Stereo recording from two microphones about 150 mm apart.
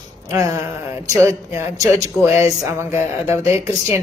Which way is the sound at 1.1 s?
20° right (ahead or behind).